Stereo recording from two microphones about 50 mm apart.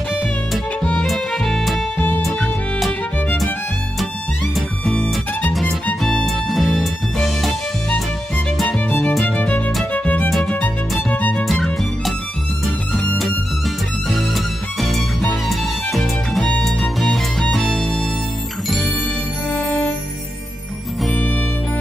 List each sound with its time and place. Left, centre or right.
1.0 s music: centre
2.0 s music: left
2.2 s music: centre
5.5 s music: centre
9.3 s music: left
9.9 s music: left
11.4 s music: centre
14.1 s music: centre
19.5 s music: left